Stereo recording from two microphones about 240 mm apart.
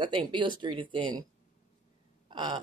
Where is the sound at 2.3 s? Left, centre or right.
Centre.